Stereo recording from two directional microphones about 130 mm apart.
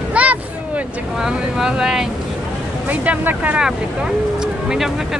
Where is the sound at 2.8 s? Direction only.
10° right (ahead or behind).